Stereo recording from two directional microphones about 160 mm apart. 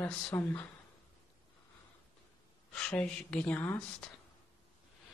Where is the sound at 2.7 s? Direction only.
5° left (ahead or behind).